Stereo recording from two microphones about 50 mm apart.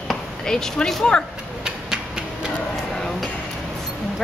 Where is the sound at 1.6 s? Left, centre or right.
Centre.